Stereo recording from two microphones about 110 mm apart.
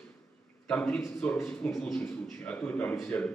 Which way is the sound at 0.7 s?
10° left (ahead or behind).